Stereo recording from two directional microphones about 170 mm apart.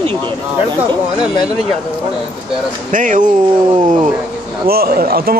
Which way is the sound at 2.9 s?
50° right (ahead or behind).